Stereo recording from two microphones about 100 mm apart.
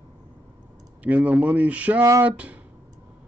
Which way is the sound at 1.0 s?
15° right (ahead or behind).